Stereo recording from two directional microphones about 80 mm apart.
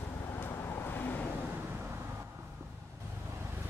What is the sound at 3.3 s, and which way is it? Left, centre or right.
Vehicle, right.